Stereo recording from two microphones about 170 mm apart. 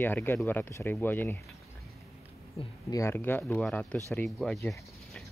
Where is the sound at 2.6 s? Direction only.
35° left (ahead or behind).